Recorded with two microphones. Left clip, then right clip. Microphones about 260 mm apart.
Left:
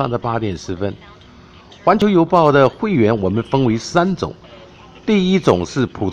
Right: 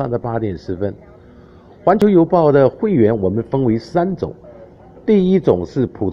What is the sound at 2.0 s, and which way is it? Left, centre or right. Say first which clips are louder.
Speech: right 1 dB; left.